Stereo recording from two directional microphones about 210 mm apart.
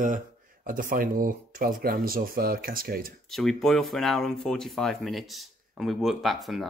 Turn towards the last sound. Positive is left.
turn(degrees=0)  # may be behind; listen again after turning